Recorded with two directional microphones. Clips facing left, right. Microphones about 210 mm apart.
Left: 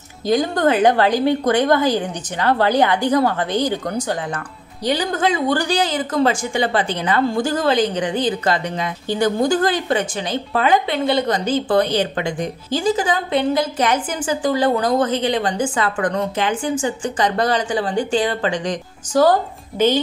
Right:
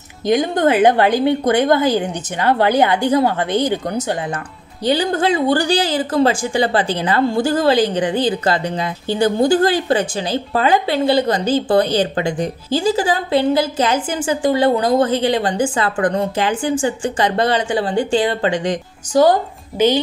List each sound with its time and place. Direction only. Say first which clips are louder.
0.3 s a woman's voice: right 2 dB; 20° right (ahead or behind)